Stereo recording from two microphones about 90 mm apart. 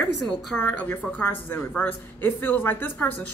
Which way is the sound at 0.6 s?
20° left (ahead or behind).